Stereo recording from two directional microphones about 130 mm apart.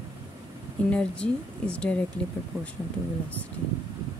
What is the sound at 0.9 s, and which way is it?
A woman's voice, 10° left (ahead or behind).